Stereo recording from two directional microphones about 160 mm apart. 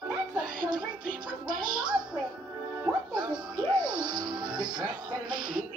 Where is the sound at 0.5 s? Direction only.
25° right (ahead or behind).